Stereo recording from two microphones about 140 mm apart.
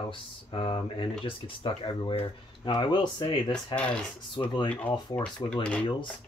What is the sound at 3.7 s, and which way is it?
Speech, 10° left (ahead or behind).